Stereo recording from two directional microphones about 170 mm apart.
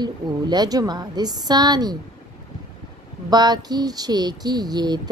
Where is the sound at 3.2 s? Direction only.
25° right (ahead or behind).